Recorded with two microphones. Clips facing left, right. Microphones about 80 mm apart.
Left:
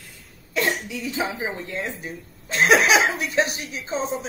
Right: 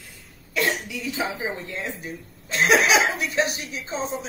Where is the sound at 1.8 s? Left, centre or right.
Left.